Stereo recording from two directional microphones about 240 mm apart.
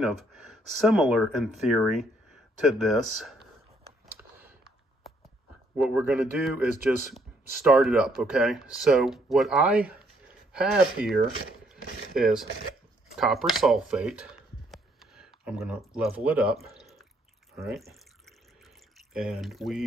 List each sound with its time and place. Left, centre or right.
0.0 s speech: centre
4.4 s a sound: centre
5.8 s speech: centre
18.9 s speech: centre